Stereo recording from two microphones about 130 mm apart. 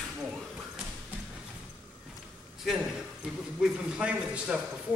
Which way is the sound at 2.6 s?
5° right (ahead or behind).